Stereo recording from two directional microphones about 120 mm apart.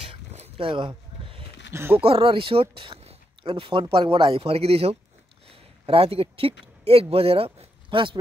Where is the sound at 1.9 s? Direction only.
50° right (ahead or behind).